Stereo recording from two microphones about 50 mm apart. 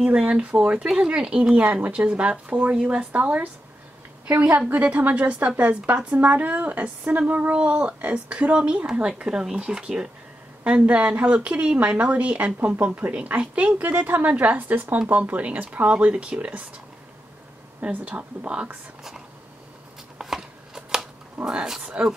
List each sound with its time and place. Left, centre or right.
0.0 s a woman's voice: right
17.9 s a woman's voice: right
20.2 s shuffling cards: centre
21.5 s a woman's voice: centre